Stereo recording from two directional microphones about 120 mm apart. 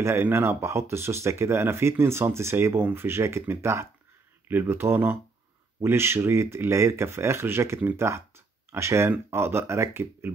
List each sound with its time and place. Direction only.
0.0 s speech: 20° right (ahead or behind)